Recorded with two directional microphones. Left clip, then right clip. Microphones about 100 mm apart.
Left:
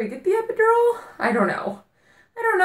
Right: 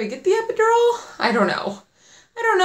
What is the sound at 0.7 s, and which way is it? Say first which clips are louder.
Speech: right 2 dB; centre (ahead or behind).